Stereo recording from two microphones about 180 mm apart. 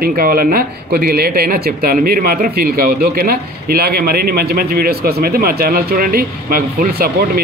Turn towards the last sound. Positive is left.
turn(degrees=-55)  # may be behind; listen again after turning